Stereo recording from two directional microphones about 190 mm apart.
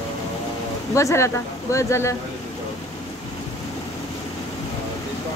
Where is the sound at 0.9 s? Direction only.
15° left (ahead or behind).